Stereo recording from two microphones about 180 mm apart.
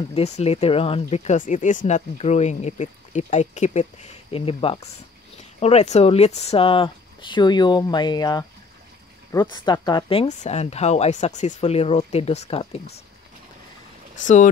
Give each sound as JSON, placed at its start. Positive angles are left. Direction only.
{"t": 0.1, "sound": "speech", "side_deg": 35}
{"t": 14.2, "sound": "speech", "side_deg": 45}